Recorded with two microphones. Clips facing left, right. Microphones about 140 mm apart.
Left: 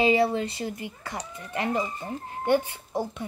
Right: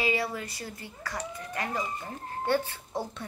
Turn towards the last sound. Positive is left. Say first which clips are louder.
# left 4 dB
turn(degrees=15)  # may be behind; listen again after turning